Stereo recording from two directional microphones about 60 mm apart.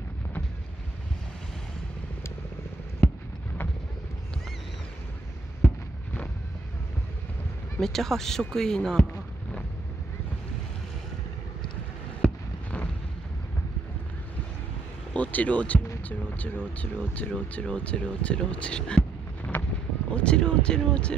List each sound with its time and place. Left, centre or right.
7.8 s speech: centre
12.2 s a sound: centre
15.1 s speech: left